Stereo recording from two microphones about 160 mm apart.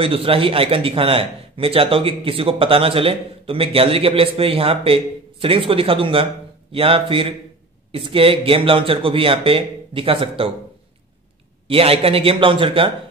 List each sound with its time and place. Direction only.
0.0 s a man's voice: 35° right (ahead or behind)
11.6 s a man's voice: 35° right (ahead or behind)